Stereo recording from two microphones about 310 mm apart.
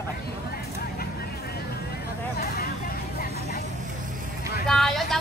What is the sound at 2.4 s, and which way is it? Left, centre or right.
Vehicle, left.